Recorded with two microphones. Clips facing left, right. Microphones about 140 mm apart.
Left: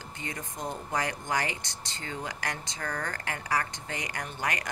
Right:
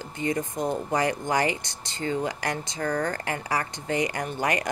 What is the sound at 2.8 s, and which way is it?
A woman's voice, 25° right (ahead or behind).